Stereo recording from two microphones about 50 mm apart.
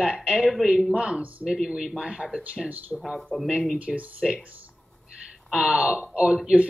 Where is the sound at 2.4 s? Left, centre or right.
Right.